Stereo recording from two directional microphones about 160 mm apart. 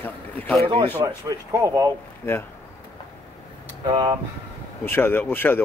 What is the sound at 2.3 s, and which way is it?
Speech, 15° left (ahead or behind).